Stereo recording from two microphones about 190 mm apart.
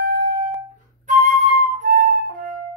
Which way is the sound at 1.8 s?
45° right (ahead or behind).